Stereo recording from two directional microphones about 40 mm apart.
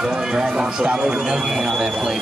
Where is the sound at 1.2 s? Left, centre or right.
Centre.